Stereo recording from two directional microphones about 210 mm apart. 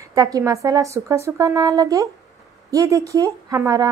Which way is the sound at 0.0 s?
15° right (ahead or behind).